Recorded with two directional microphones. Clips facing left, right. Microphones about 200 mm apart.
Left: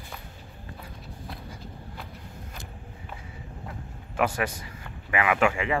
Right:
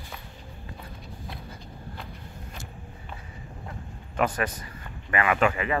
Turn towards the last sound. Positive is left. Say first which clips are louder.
# even
turn(degrees=10)  # may be behind; listen again after turning